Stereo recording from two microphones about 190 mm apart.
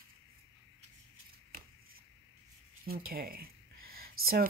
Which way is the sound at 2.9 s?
50° right (ahead or behind).